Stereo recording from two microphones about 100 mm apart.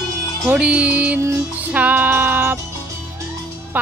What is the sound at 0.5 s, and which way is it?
Speech, 15° right (ahead or behind).